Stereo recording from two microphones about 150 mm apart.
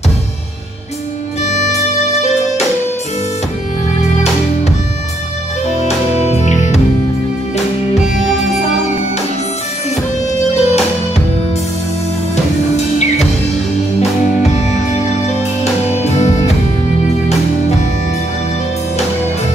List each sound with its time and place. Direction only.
1.5 s music: 50° left (ahead or behind)
5.7 s music: 45° left (ahead or behind)
10.5 s music: 45° left (ahead or behind)
15.6 s music: 45° left (ahead or behind)